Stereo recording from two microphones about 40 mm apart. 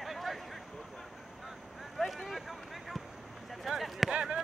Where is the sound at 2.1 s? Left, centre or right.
Centre.